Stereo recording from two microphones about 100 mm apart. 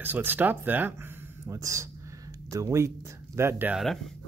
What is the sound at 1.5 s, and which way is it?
Speech, 30° right (ahead or behind).